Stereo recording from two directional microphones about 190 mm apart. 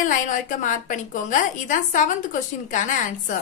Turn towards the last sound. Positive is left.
turn(degrees=45)  # may be behind; listen again after turning